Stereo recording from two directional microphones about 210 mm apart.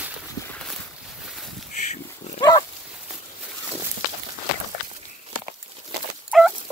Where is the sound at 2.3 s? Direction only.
20° left (ahead or behind).